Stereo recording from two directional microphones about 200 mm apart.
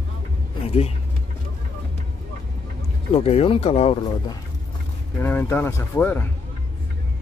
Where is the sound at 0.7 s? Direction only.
30° left (ahead or behind).